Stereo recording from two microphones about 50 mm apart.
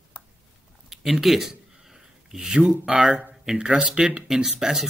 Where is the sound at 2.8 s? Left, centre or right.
Centre.